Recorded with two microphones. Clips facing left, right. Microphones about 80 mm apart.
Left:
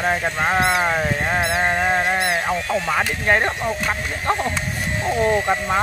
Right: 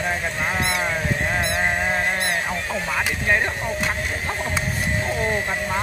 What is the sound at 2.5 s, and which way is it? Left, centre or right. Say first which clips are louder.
Speech: left 5 dB; left.